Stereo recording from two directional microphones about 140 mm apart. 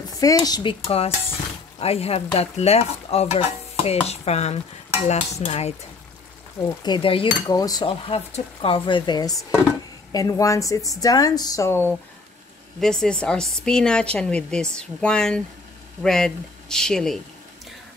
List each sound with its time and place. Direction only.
0.1 s speech: 25° left (ahead or behind); by 5.8 s 50° left (ahead or behind)
6.8 s speech: 35° left (ahead or behind)
7.5 s speech: 30° left (ahead or behind)
12.8 s a woman's voice: 5° left (ahead or behind)